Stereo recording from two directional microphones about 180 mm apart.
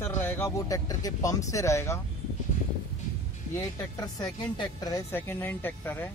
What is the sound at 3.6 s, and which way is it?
Speech, 20° left (ahead or behind).